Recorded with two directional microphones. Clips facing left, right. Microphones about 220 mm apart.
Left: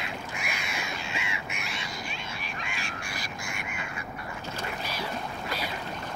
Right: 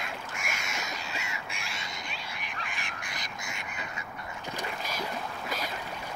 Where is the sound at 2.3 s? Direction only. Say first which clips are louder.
Left 3 dB; 20° right (ahead or behind).